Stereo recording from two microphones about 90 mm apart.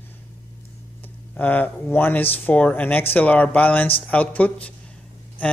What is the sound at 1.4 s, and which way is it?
Speech, 15° left (ahead or behind).